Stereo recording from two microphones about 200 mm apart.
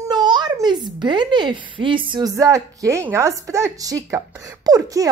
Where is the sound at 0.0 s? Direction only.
20° right (ahead or behind).